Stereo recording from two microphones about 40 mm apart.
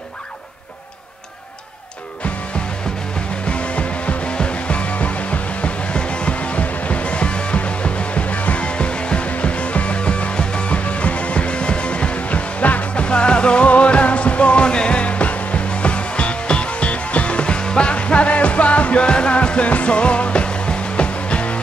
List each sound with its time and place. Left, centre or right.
3.4 s music: left
13.0 s music: left